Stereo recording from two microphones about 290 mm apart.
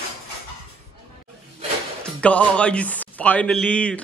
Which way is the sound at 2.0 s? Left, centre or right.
Centre.